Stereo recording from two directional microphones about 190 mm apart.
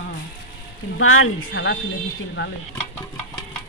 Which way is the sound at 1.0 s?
90° left.